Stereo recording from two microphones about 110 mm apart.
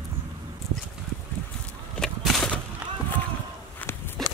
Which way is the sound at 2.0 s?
5° left (ahead or behind).